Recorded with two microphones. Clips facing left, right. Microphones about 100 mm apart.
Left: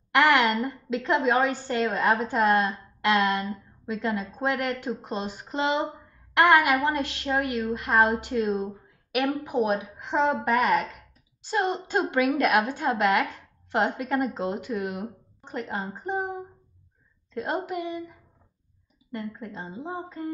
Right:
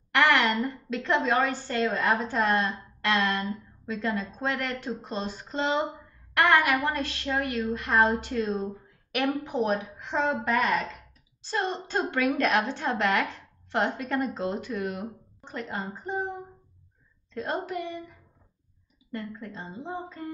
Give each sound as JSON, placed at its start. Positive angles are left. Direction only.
{"t": 0.1, "sound": "a sound", "side_deg": 15}
{"t": 0.8, "sound": "a woman's voice", "side_deg": 15}
{"t": 17.3, "sound": "a woman's voice", "side_deg": 15}
{"t": 19.1, "sound": "a woman's voice", "side_deg": 15}